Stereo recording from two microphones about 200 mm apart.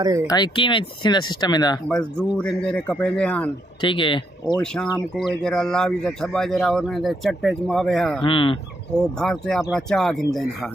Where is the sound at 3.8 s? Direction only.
25° left (ahead or behind).